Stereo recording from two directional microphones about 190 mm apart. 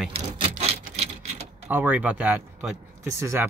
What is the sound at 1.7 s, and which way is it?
Speech, 10° right (ahead or behind).